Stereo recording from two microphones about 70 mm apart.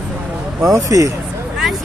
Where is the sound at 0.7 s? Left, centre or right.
Right.